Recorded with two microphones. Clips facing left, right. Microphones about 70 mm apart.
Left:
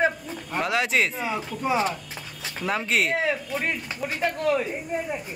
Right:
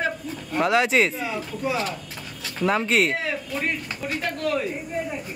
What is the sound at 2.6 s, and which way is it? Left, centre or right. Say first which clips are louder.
Speech: right 4 dB; centre.